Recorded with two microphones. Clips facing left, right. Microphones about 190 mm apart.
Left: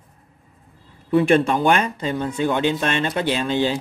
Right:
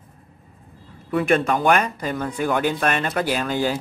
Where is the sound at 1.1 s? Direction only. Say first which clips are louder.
Left 3 dB; 30° left (ahead or behind).